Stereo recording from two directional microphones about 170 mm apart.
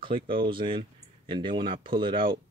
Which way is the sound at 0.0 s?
30° right (ahead or behind).